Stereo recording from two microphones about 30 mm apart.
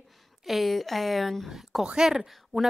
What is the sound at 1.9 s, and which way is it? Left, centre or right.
Speech, right.